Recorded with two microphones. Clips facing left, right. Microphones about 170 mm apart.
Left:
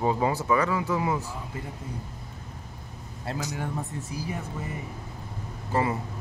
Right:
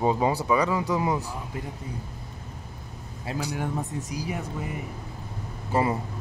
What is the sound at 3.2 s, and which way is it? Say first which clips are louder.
Speech: right 2 dB; 10° right (ahead or behind).